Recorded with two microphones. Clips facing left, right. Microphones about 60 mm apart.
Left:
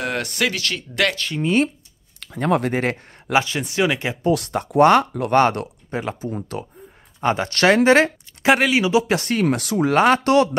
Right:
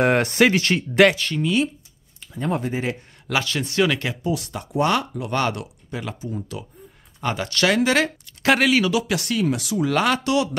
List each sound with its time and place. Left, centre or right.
0.0 s speech: right
1.4 s speech: left
2.1 s speech: left
3.3 s speech: left
4.2 s speech: left
8.7 s speech: centre
9.0 s speech: left
9.4 s speech: left